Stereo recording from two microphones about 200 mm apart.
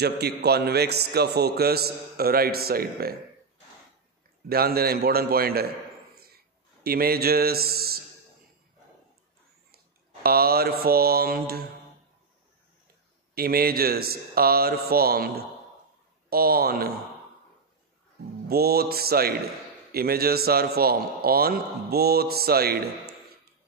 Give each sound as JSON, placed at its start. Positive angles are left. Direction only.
{"t": 0.0, "sound": "a man's voice", "side_deg": -55}
{"t": 4.5, "sound": "a man's voice", "side_deg": -50}
{"t": 6.1, "sound": "a sound", "side_deg": -50}
{"t": 10.2, "sound": "a man's voice", "side_deg": -50}
{"t": 13.3, "sound": "a man's voice", "side_deg": -50}
{"t": 18.5, "sound": "a man's voice", "side_deg": -50}